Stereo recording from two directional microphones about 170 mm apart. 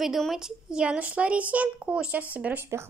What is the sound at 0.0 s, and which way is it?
A woman's voice, centre (ahead or behind).